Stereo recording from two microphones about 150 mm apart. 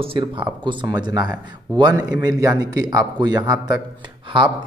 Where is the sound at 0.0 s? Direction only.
35° right (ahead or behind).